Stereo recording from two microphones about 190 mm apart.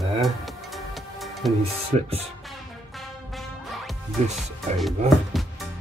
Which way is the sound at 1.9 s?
40° right (ahead or behind).